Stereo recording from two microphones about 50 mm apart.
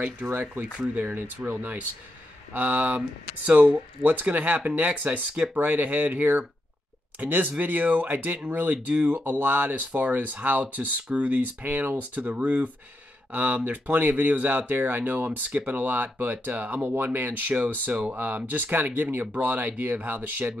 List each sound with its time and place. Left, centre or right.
0.0 s speech: right
12.2 s speech: right
13.3 s speech: right